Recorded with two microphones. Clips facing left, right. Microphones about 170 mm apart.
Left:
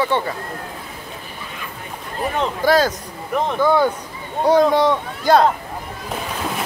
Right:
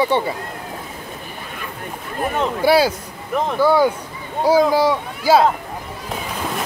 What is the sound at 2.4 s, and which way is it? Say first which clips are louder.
Speech: right 1 dB; 10° right (ahead or behind).